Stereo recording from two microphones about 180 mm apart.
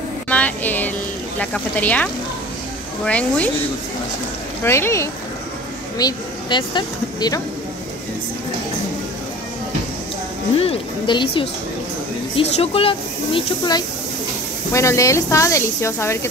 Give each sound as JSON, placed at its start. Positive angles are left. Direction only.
{"t": 0.3, "sound": "a sound", "side_deg": 10}
{"t": 1.4, "sound": "speech", "side_deg": 10}
{"t": 3.1, "sound": "speech", "side_deg": 5}
{"t": 4.6, "sound": "speech", "side_deg": 15}
{"t": 10.6, "sound": "a woman's voice", "side_deg": 30}